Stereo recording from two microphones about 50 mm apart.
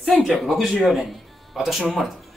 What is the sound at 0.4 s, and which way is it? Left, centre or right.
A man's voice, centre.